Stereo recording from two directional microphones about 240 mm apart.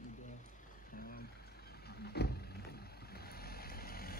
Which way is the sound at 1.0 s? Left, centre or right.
Left.